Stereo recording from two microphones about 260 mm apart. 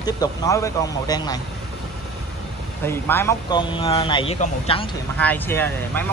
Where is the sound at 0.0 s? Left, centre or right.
Centre.